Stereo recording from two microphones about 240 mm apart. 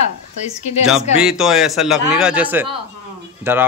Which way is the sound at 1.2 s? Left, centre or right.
Centre.